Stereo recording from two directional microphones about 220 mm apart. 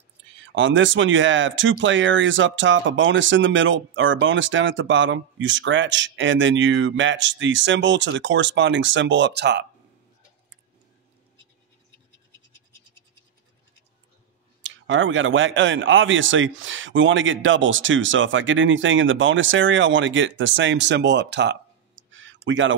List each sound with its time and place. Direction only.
0.4 s speech: 60° right (ahead or behind)
14.6 s speech: 60° right (ahead or behind)